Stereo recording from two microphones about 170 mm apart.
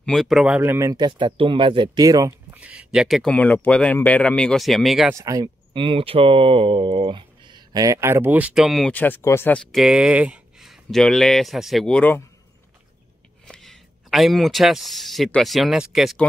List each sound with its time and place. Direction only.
0.0 s speech: centre (ahead or behind); by 2.6 s 20° right (ahead or behind)
2.6 s speech: 5° right (ahead or behind)
5.1 s speech: 20° right (ahead or behind); by 12.2 s 10° left (ahead or behind)
13.5 s speech: centre (ahead or behind)